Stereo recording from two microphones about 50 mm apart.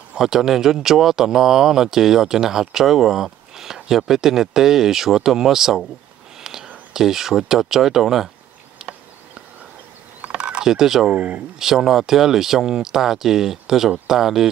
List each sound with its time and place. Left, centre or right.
0.2 s speech: centre
6.4 s a sound: centre
6.9 s speech: centre
10.2 s mechanisms: right
11.1 s speech: right
11.6 s speech: centre